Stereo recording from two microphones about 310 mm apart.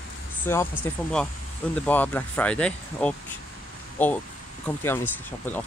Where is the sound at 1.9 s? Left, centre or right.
Centre.